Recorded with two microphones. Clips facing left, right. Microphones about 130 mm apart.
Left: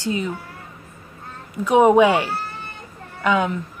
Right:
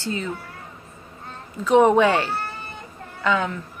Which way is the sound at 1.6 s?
10° left (ahead or behind).